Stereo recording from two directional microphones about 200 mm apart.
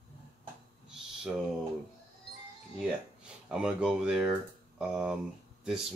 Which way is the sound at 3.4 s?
5° right (ahead or behind).